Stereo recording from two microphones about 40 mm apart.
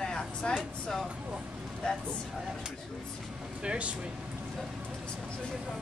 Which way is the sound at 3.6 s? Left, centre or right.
Right.